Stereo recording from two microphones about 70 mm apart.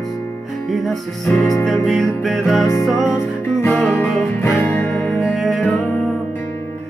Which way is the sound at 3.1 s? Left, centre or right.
Left.